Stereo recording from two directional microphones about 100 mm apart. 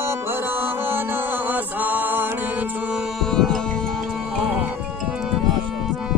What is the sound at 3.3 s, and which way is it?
Music, 5° left (ahead or behind).